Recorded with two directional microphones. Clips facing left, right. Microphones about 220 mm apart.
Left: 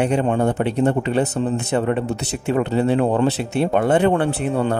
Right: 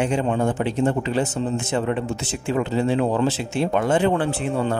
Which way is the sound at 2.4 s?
60° left (ahead or behind).